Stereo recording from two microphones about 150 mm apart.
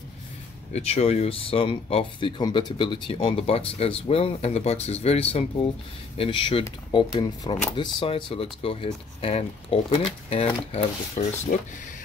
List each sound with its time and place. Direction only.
0.7 s speech: 45° left (ahead or behind)
11.5 s speech: 60° left (ahead or behind)